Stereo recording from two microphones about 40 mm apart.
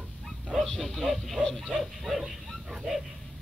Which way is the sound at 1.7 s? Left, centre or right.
Centre.